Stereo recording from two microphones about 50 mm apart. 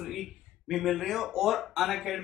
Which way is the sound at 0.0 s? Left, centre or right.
Centre.